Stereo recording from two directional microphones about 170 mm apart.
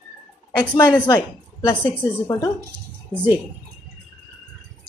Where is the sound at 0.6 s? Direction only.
25° left (ahead or behind).